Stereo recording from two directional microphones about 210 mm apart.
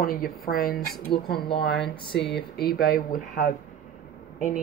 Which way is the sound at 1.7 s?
55° left (ahead or behind).